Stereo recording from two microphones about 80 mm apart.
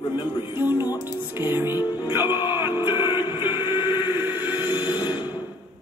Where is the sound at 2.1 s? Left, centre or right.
Right.